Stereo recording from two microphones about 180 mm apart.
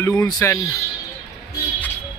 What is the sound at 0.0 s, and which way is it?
Speech, 20° left (ahead or behind).